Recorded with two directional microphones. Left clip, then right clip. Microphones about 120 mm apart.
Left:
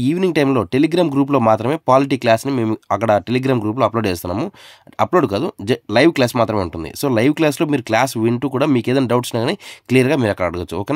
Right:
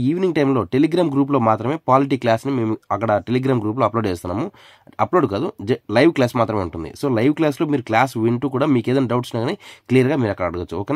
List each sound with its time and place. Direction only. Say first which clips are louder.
0.0 s speech: left 2 dB; 35° left (ahead or behind)